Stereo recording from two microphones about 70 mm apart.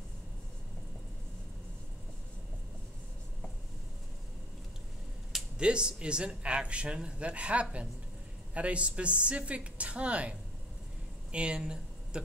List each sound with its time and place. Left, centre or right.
5.3 s speech: centre
11.3 s speech: centre